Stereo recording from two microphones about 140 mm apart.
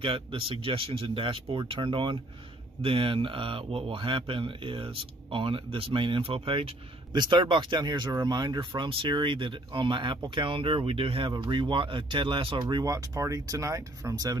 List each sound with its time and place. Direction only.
0.0 s speech: 35° right (ahead or behind)